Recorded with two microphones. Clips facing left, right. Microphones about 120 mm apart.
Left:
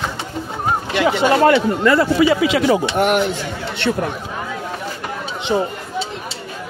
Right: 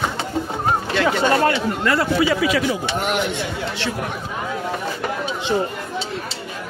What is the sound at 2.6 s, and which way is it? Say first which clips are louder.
Speech: left 6 dB; 60° left (ahead or behind).